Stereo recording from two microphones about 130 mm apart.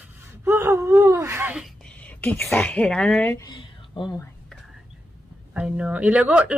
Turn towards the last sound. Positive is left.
turn(degrees=-10)  # may be behind; listen again after turning